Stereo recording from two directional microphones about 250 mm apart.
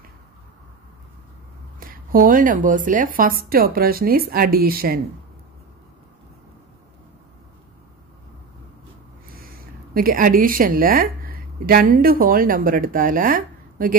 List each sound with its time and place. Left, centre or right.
1.8 s a woman's voice: right
9.9 s a woman's voice: right